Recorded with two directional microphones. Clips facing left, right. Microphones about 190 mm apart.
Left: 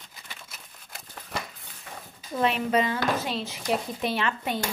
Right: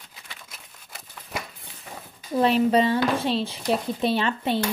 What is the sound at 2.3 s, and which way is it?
Speech, 30° right (ahead or behind).